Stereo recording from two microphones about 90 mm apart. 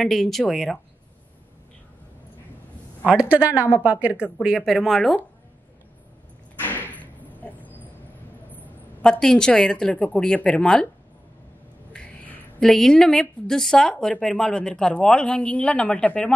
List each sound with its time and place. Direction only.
0.0 s speech: centre (ahead or behind)
3.1 s speech: 10° right (ahead or behind)
6.6 s a sound: 20° left (ahead or behind)
9.0 s a man's voice: 10° left (ahead or behind)
11.9 s a man's voice: 10° left (ahead or behind)